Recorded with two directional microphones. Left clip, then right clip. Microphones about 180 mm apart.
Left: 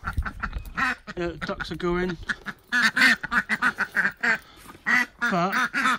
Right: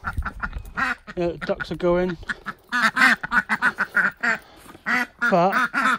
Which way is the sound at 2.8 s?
40° right (ahead or behind).